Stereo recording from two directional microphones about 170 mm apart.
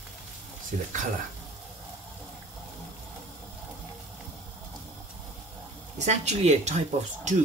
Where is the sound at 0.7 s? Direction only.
50° right (ahead or behind).